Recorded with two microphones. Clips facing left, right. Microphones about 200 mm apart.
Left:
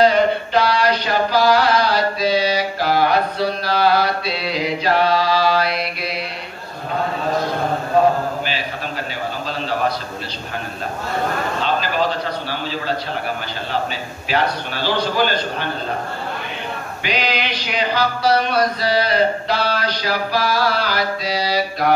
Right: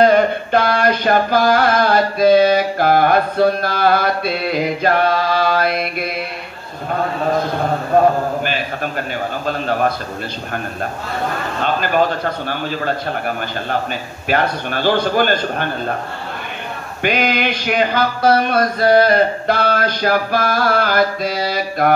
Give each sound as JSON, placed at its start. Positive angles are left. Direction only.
{"t": 0.0, "sound": "mantra", "side_deg": -50}
{"t": 7.9, "sound": "mantra", "side_deg": -50}
{"t": 9.5, "sound": "mantra", "side_deg": -50}
{"t": 11.6, "sound": "mantra", "side_deg": -50}
{"t": 14.3, "sound": "mantra", "side_deg": -50}
{"t": 17.0, "sound": "mantra", "side_deg": -50}